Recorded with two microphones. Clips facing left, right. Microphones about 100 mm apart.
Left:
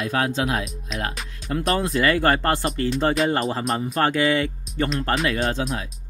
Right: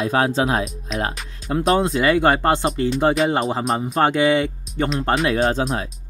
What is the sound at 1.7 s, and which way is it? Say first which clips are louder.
Speech: right 2 dB; 25° right (ahead or behind).